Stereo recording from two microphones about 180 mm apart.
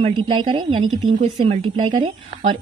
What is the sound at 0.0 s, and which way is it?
A woman's voice, 30° right (ahead or behind).